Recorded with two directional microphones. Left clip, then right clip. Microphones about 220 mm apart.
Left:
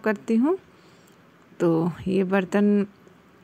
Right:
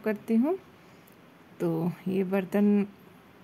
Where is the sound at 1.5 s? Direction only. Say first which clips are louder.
Left 8 dB; 20° left (ahead or behind).